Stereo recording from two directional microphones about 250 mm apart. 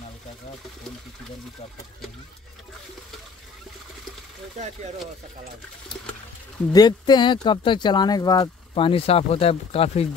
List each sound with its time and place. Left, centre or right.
6.6 s speech: centre